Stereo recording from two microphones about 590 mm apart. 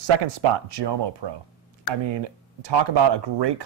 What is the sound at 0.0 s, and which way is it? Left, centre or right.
Speech, right.